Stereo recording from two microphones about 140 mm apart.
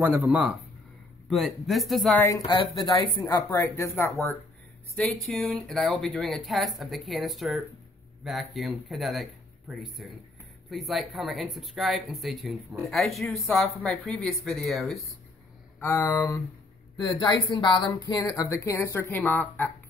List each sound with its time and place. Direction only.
0.0 s a man's voice: 10° right (ahead or behind)
2.1 s speech: 20° left (ahead or behind)
2.4 s speech: 35° left (ahead or behind); by 4.1 s 20° left (ahead or behind)
4.9 s speech: 5° left (ahead or behind)
15.8 s speech: 20° left (ahead or behind)
17.0 s speech: 30° left (ahead or behind); by 19.7 s 15° left (ahead or behind)